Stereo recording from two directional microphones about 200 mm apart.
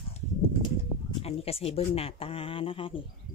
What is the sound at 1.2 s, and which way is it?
A woman's voice, 30° left (ahead or behind).